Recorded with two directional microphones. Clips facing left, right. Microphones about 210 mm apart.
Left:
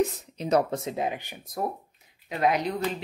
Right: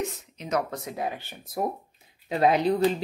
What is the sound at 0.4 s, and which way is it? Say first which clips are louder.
Speech: left 5 dB; 30° left (ahead or behind).